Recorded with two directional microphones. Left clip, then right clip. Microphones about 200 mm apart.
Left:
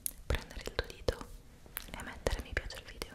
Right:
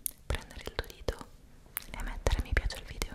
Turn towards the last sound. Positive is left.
turn(degrees=-25)  # may be behind; listen again after turning